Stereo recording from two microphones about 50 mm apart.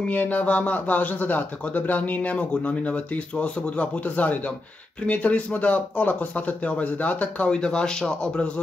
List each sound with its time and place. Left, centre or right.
0.1 s speech: left